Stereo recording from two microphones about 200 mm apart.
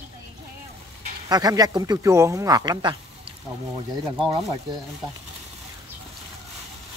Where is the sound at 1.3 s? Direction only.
20° right (ahead or behind).